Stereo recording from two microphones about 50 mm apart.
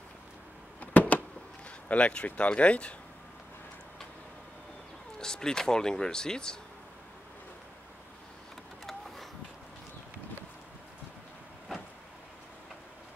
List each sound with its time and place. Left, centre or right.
0.7 s power windows: left
1.9 s speech: left
5.2 s speech: centre
8.8 s a sound: centre